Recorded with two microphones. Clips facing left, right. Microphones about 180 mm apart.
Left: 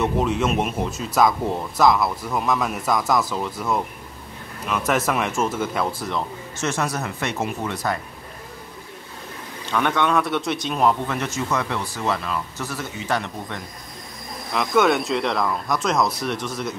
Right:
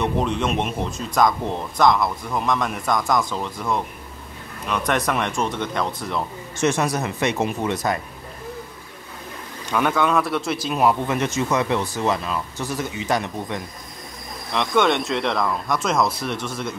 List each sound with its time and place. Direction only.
0.0 s speech: 5° left (ahead or behind)
6.6 s a man's voice: 15° right (ahead or behind)
9.7 s a man's voice: 5° right (ahead or behind)
14.5 s speech: 5° left (ahead or behind)